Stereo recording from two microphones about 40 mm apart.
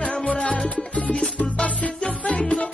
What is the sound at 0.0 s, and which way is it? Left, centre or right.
Music, left.